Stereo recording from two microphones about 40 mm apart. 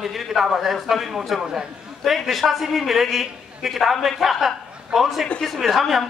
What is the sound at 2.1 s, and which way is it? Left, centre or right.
A woman's voice, centre.